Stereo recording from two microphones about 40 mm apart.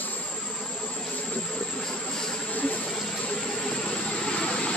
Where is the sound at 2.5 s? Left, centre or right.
Left.